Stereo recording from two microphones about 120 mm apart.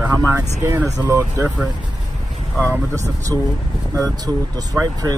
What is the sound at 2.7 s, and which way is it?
Speech, 25° right (ahead or behind).